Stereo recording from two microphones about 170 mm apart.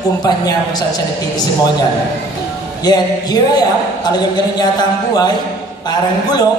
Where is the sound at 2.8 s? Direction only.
25° left (ahead or behind).